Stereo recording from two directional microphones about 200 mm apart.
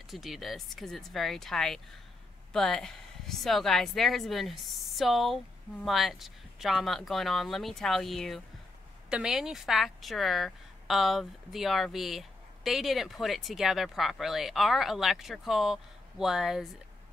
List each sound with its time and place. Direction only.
0.1 s a woman's voice: centre (ahead or behind)